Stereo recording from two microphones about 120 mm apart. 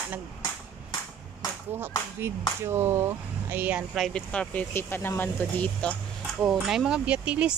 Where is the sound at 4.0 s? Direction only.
5° left (ahead or behind).